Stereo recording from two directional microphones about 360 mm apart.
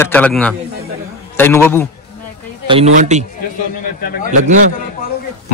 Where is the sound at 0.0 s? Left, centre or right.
Centre.